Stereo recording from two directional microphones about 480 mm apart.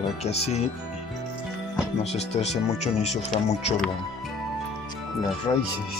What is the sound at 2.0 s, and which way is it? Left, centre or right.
Speech, centre.